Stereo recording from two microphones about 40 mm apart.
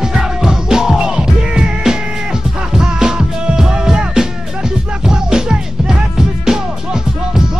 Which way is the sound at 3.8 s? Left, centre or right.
Centre.